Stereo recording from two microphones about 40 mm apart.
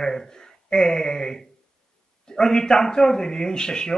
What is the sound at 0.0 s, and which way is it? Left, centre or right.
A man's voice, centre.